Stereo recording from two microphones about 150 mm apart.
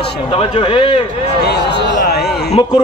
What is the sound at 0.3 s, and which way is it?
Speech, 35° left (ahead or behind).